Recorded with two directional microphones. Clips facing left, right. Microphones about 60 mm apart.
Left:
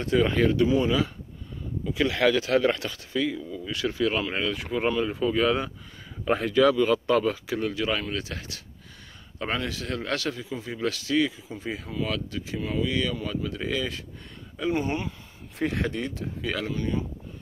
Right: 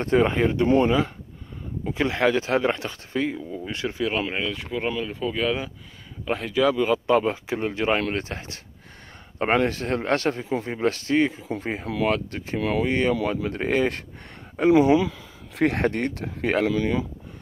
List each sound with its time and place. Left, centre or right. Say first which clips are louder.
0.0 s speech: right 2 dB; right
4.0 s speech: right 1 dB; centre
6.8 s speech: right 2 dB; centre; by 11.4 s right
11.6 s speech: right 6 dB; right
12.5 s speech: right 5 dB; right
12.8 s speech: right 6 dB; right
16.6 s speech: right 6 dB; right